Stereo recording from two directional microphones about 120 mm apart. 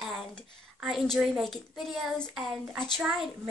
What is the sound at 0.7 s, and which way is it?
A woman's voice, centre (ahead or behind).